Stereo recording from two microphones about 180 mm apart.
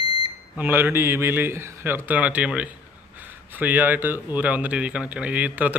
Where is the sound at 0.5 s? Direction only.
10° right (ahead or behind).